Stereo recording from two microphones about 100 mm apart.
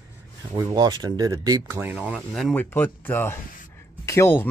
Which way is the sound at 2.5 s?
20° left (ahead or behind).